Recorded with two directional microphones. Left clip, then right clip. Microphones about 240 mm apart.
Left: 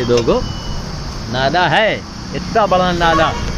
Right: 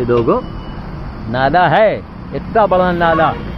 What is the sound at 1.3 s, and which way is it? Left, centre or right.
Speech, right.